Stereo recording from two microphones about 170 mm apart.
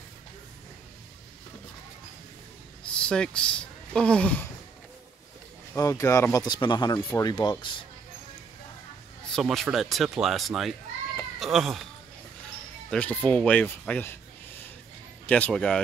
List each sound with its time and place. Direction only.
2.9 s speech: 5° left (ahead or behind)
5.8 s speech: 20° left (ahead or behind)
9.3 s a man's voice: centre (ahead or behind)
12.9 s speech: 10° left (ahead or behind)
15.2 s speech: 10° left (ahead or behind)